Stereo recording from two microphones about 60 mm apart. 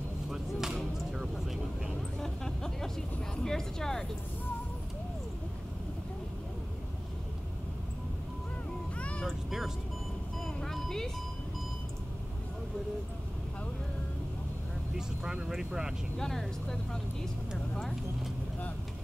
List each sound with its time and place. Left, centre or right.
0.3 s a sound: centre
1.3 s vehicle: centre
2.1 s a sound: centre
8.9 s vehicle: left
9.2 s vehicle: centre
10.4 s vehicle: centre
15.0 s vehicle: centre
16.2 s speech: centre